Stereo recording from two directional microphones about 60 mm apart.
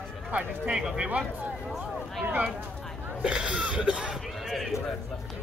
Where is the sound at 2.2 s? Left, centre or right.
Right.